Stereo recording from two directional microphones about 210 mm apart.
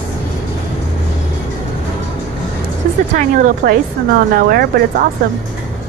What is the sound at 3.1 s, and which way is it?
A woman's voice, 40° right (ahead or behind).